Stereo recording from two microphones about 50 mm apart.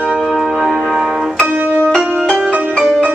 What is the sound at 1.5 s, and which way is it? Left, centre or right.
Music, right.